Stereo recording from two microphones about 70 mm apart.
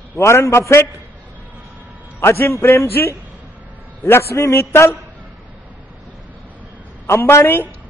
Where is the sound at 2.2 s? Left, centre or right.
Left.